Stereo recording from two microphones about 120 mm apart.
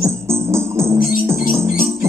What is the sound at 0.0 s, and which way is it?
Music, 20° right (ahead or behind).